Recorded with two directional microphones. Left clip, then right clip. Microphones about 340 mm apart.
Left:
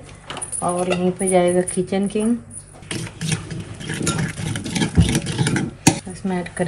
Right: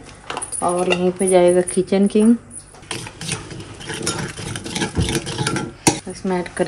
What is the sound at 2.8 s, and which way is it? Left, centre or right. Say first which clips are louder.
Vehicle: even; centre.